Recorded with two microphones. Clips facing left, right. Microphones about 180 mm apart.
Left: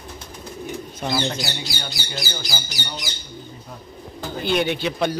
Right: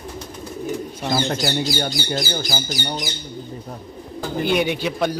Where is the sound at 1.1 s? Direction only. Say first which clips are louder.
Right 6 dB; 45° right (ahead or behind).